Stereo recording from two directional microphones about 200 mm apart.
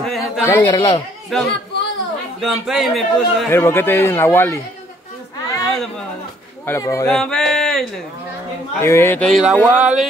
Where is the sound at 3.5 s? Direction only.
10° left (ahead or behind).